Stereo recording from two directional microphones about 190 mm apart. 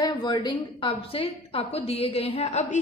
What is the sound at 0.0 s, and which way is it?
A woman's voice, 25° left (ahead or behind).